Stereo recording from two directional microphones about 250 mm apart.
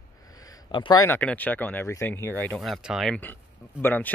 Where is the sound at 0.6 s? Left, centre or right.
Centre.